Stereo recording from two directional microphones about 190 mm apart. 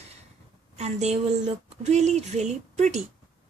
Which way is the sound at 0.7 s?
35° right (ahead or behind).